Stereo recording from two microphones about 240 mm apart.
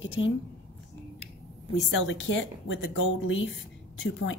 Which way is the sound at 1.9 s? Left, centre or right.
Left.